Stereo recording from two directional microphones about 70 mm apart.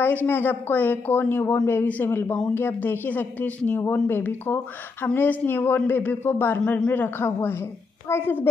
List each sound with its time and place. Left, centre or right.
0.0 s speech: left